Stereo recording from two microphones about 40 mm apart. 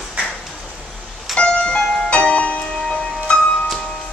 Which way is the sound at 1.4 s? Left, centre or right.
Left.